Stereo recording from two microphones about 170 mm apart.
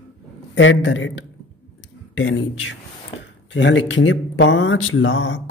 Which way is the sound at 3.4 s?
90° left.